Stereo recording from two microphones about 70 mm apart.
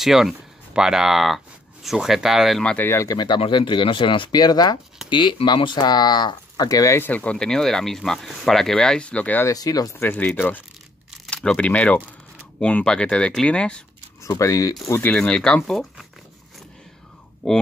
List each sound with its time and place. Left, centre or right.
0.0 s speech: centre
3.2 s speech: left
4.3 s speech: left
5.1 s speech: left
7.0 s speech: left
9.5 s speech: left
10.1 s speech: left
11.3 s speech: centre
14.2 s speech: left
15.0 s speech: centre